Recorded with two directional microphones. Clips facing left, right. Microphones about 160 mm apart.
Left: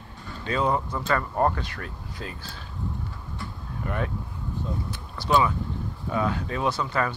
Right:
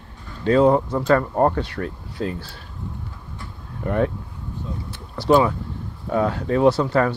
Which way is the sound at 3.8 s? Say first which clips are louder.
Right 9 dB; 45° right (ahead or behind).